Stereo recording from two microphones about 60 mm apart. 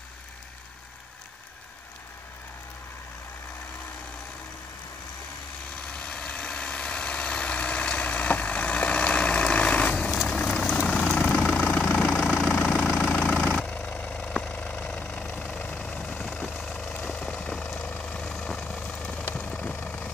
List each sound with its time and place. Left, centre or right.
5.8 s vehicle: centre
11.3 s vehicle: left; by 17.8 s centre
17.8 s vehicle: left
18.1 s vehicle: centre